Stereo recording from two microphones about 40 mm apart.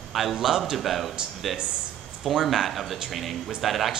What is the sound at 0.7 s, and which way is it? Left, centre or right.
A man's voice, centre.